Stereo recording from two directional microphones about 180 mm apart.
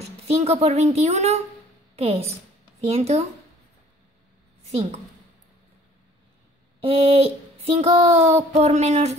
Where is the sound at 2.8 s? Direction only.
35° right (ahead or behind).